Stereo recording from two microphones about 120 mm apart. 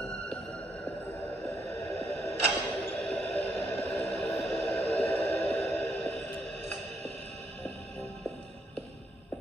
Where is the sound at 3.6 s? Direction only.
20° left (ahead or behind).